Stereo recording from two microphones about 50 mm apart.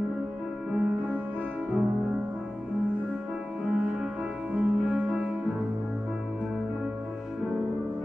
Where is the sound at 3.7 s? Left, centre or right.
Right.